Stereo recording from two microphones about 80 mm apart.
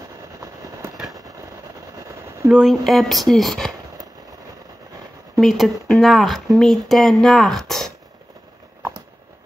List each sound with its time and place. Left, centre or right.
2.5 s speech: centre
5.4 s speech: centre